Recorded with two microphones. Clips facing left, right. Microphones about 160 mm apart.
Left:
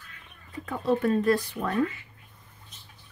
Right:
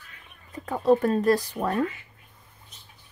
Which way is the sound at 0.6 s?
40° right (ahead or behind).